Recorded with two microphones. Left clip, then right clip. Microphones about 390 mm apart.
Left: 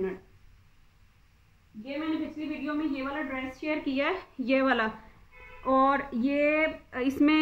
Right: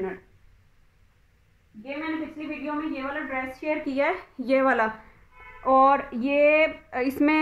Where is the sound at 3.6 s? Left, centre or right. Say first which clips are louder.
Right 4 dB; centre.